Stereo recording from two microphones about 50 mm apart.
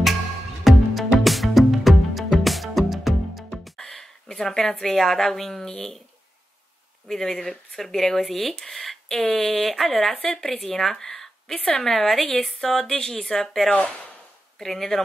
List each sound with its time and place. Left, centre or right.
0.7 s music: centre
3.6 s a woman's voice: centre
7.1 s speech: centre
10.1 s speech: centre
13.7 s speech: left
14.6 s speech: centre